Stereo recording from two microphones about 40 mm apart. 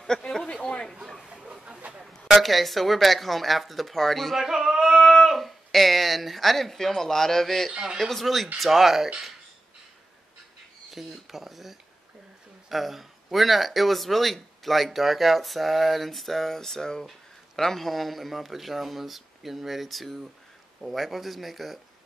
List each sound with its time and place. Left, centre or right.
0.5 s chatter: left
1.5 s a sound: right
2.4 s speech: centre
4.4 s speech: centre
10.9 s speech: centre